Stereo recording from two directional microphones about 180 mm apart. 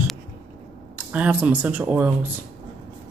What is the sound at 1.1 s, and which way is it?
A woman's voice, 10° right (ahead or behind).